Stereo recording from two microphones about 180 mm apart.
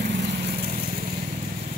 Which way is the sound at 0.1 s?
65° right (ahead or behind).